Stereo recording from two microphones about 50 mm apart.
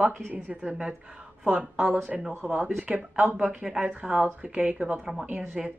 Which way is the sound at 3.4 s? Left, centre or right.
Centre.